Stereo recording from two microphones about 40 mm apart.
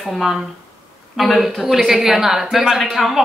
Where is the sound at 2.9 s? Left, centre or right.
Centre.